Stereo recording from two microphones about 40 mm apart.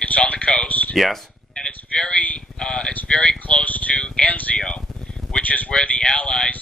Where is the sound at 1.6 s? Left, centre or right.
Left.